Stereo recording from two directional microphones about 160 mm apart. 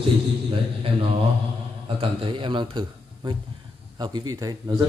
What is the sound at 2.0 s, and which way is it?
A man's voice, 35° right (ahead or behind).